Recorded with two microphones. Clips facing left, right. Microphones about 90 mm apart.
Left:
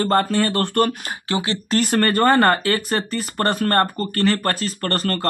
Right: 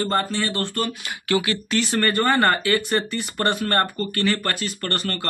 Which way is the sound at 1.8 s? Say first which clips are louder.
Left 4 dB; 45° left (ahead or behind).